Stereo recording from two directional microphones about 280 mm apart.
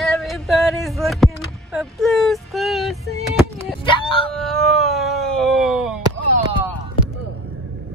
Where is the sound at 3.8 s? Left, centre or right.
Centre.